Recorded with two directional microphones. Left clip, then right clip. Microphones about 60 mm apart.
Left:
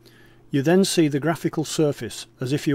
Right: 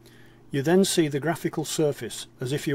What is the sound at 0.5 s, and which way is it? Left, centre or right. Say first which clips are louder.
Speech: left 3 dB; left.